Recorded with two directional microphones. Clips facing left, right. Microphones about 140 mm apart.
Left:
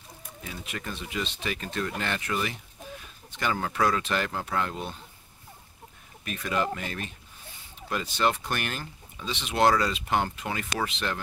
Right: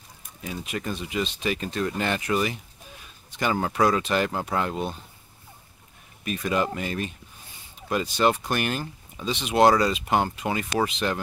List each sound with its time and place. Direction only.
0.7 s speech: 20° right (ahead or behind)
6.2 s speech: 15° right (ahead or behind)